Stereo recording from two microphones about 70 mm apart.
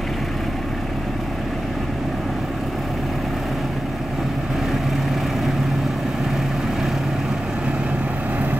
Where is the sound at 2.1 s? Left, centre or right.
Centre.